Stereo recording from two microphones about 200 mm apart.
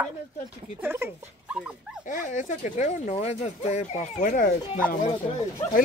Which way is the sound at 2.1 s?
40° left (ahead or behind).